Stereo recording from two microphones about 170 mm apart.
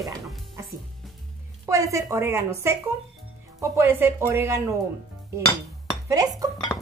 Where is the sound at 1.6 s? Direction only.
20° right (ahead or behind).